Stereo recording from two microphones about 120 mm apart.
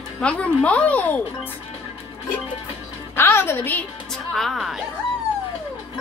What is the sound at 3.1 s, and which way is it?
Music, 20° left (ahead or behind).